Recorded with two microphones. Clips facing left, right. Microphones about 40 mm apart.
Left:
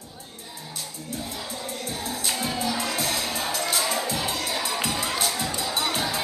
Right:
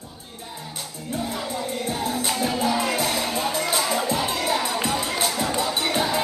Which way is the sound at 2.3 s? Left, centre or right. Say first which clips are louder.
Right 3 dB; centre.